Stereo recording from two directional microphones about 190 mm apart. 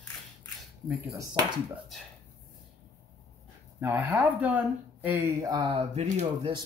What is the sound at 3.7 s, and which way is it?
Speech, 10° right (ahead or behind).